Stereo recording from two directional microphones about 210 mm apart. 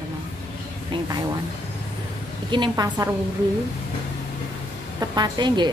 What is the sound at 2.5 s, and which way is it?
Speech, 20° right (ahead or behind).